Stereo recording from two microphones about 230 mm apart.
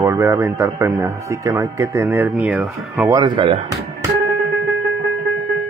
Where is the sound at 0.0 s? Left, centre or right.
Centre.